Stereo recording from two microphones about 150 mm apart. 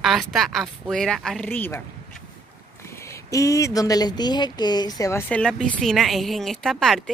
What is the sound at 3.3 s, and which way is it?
Speech, 20° left (ahead or behind).